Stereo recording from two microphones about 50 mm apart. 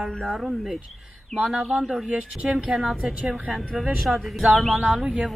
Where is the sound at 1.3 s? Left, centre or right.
Centre.